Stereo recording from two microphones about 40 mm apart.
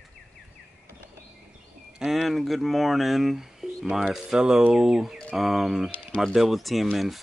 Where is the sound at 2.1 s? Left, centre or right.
Centre.